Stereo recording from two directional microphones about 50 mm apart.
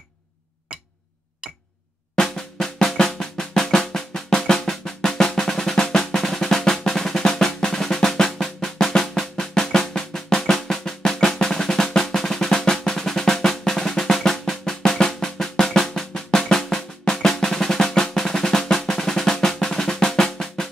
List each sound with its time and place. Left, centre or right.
2.1 s drum: centre
16.3 s drum roll: centre
16.5 s drum: centre